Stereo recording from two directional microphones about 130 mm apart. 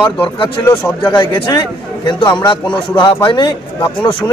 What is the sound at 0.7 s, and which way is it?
Speech, 20° left (ahead or behind).